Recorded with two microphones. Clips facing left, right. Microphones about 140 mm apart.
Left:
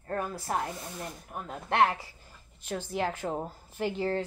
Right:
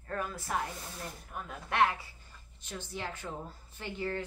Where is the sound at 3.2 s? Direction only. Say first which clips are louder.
Left 8 dB; 40° left (ahead or behind).